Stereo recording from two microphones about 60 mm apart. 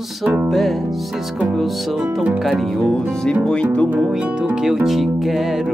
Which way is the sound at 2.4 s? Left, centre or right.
Centre.